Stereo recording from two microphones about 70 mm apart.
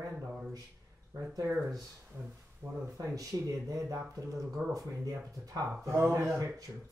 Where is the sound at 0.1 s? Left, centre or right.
Centre.